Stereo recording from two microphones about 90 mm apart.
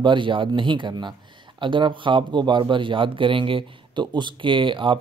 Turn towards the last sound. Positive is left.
turn(degrees=-65)  # may be behind; listen again after turning